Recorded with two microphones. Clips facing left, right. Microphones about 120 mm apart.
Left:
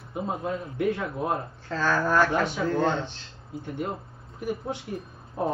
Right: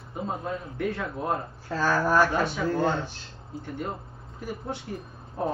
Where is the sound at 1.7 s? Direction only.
10° right (ahead or behind).